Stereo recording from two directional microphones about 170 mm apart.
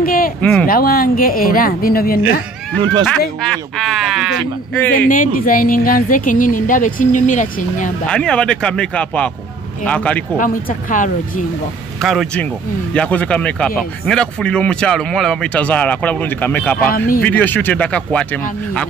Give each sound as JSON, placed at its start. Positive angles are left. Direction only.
{"t": 0.0, "sound": "a sound", "side_deg": 60}
{"t": 0.4, "sound": "speech", "side_deg": 10}
{"t": 0.7, "sound": "a woman's voice", "side_deg": 60}
{"t": 3.1, "sound": "speech", "side_deg": 5}
{"t": 4.9, "sound": "speech", "side_deg": 55}
{"t": 8.1, "sound": "speech", "side_deg": 5}
{"t": 10.3, "sound": "speech", "side_deg": 50}
{"t": 12.0, "sound": "speech", "side_deg": 0}